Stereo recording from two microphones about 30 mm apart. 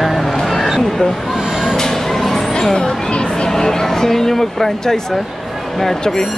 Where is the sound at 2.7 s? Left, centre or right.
Left.